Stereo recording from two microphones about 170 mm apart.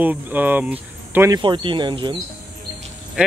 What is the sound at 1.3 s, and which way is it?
Speech, 30° right (ahead or behind).